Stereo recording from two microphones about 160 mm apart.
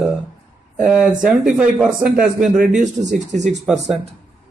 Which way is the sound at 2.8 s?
50° right (ahead or behind).